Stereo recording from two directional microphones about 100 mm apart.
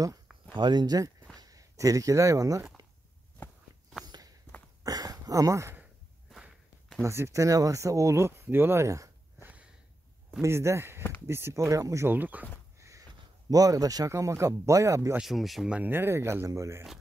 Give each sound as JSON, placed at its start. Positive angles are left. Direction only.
{"t": 0.6, "sound": "speech", "side_deg": -45}
{"t": 3.4, "sound": "walk", "side_deg": 20}
{"t": 4.0, "sound": "walk", "side_deg": -40}
{"t": 4.8, "sound": "a sound", "side_deg": -40}
{"t": 7.0, "sound": "speech", "side_deg": -30}
{"t": 9.4, "sound": "sniff", "side_deg": -15}
{"t": 10.4, "sound": "speech", "side_deg": -30}
{"t": 12.1, "sound": "speech", "side_deg": -15}
{"t": 12.7, "sound": "a man's voice", "side_deg": -30}
{"t": 15.1, "sound": "speech", "side_deg": 0}
{"t": 15.7, "sound": "speech", "side_deg": -20}